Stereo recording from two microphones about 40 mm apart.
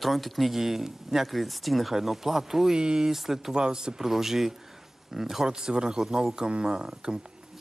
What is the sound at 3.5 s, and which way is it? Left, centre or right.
Speech, centre.